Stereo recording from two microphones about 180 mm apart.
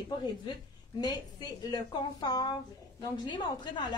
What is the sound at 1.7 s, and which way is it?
A woman's voice, 20° left (ahead or behind).